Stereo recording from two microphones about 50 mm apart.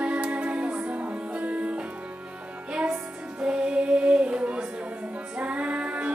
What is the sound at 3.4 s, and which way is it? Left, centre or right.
Music, right.